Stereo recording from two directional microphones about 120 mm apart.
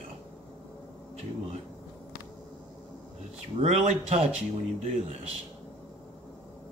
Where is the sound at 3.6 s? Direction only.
90° right.